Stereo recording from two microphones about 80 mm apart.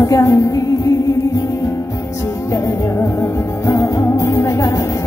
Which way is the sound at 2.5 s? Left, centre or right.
Left.